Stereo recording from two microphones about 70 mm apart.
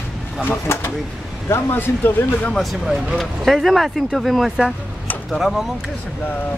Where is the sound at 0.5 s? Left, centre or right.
Left.